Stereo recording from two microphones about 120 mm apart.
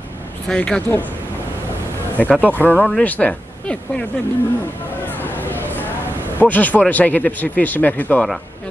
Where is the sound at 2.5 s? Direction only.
15° left (ahead or behind).